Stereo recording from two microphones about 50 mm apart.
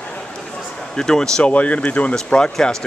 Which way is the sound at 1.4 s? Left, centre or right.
Left.